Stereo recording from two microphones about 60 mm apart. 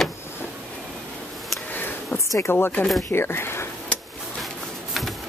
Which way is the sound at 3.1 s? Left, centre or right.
Left.